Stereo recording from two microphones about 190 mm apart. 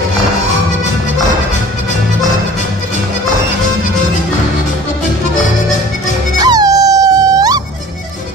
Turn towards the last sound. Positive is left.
turn(degrees=-20)  # may be behind; listen again after turning